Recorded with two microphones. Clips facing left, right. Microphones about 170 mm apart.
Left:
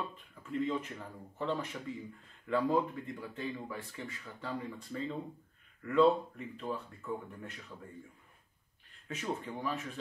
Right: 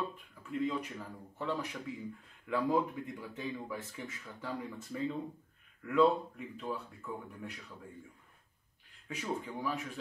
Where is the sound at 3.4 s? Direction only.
15° right (ahead or behind).